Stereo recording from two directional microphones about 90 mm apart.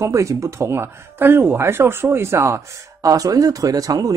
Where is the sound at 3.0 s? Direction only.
40° right (ahead or behind).